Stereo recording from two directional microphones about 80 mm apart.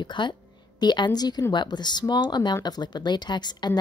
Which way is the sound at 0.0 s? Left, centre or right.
Left.